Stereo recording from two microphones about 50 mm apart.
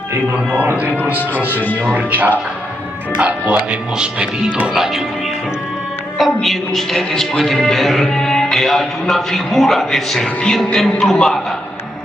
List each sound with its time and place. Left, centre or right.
0.7 s speech: right
1.3 s speech: left
2.0 s speech: right
4.7 s speech: centre
6.1 s a man's voice: centre